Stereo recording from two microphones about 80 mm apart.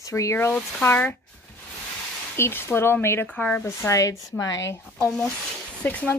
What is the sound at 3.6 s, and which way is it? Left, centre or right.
Speech, left.